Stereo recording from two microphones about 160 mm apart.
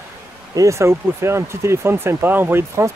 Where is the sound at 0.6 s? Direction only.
20° right (ahead or behind).